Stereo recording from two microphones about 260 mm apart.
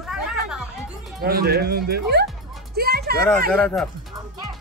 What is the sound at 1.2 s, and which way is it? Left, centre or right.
Speech, right.